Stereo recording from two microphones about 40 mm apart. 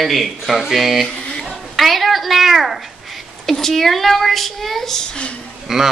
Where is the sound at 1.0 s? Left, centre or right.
Centre.